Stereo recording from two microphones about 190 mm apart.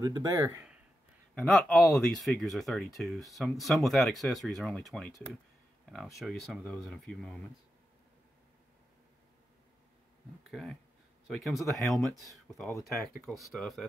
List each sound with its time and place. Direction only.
0.0 s speech: 20° right (ahead or behind)
1.3 s speech: 5° left (ahead or behind)
10.5 s speech: centre (ahead or behind)